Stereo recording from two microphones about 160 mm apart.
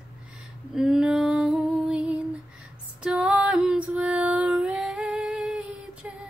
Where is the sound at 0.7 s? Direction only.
5° right (ahead or behind).